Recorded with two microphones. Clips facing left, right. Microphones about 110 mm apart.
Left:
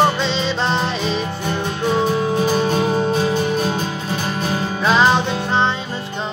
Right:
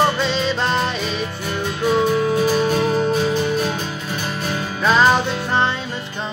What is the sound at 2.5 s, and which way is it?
Music, 30° left (ahead or behind).